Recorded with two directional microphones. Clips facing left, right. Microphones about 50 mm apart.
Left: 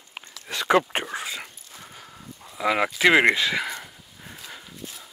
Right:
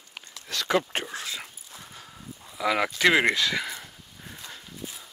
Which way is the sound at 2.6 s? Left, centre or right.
Centre.